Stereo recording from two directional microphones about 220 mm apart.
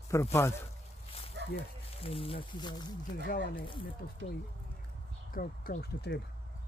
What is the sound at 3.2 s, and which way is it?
Speech, 45° left (ahead or behind).